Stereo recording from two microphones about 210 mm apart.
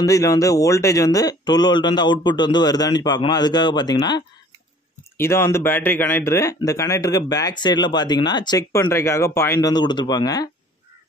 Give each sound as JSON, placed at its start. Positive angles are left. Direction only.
{"t": 0.0, "sound": "speech", "side_deg": 15}